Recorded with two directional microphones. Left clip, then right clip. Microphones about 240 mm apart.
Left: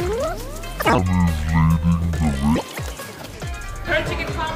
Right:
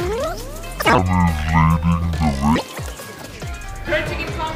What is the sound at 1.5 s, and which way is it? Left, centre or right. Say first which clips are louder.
Music: right 6 dB; centre.